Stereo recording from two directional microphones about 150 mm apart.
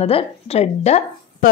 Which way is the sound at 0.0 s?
45° left (ahead or behind).